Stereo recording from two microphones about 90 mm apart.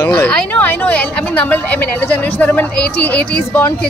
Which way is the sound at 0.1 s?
15° left (ahead or behind).